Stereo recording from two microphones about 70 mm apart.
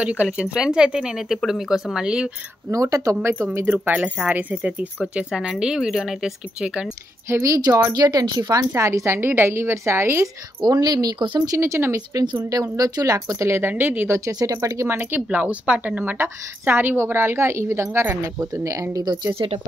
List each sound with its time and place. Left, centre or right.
0.0 s speech: centre
2.7 s speech: right
3.2 s a woman's voice: right
3.6 s speech: right
5.1 s speech: centre
7.2 s a woman's voice: right
8.7 s a woman's voice: right
10.6 s speech: right
11.5 s a woman's voice: right
12.7 s a woman's voice: right
13.5 s a woman's voice: right
14.1 s speech: right
14.9 s speech: right
15.2 s a woman's voice: centre; by 19.0 s right